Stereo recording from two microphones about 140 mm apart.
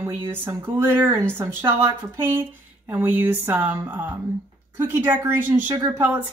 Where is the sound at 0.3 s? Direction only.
20° right (ahead or behind).